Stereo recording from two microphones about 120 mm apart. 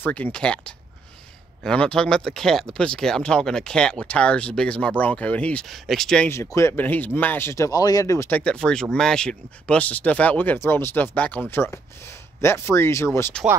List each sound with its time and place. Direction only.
0.0 s speech: 10° left (ahead or behind)
6.2 s speech: 20° left (ahead or behind)
8.3 s speech: 10° left (ahead or behind)